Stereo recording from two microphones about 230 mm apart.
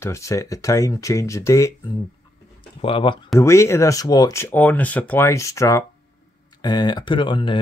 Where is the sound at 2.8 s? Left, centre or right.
Left.